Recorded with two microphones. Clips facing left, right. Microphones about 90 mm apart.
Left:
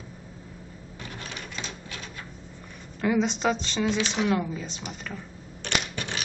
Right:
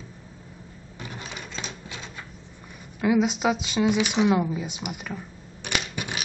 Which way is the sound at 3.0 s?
5° right (ahead or behind).